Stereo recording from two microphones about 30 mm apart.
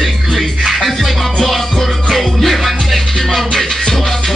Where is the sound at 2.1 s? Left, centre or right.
Centre.